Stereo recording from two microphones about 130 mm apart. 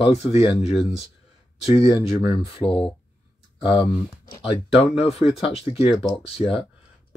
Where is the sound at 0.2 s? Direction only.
50° left (ahead or behind).